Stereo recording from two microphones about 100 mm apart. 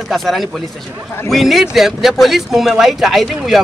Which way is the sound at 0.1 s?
Centre (ahead or behind).